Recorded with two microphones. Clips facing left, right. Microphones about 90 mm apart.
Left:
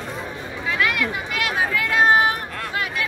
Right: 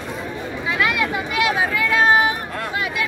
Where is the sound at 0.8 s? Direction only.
20° right (ahead or behind).